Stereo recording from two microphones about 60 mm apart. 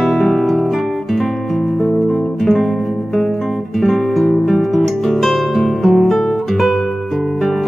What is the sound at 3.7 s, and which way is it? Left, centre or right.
Music, centre.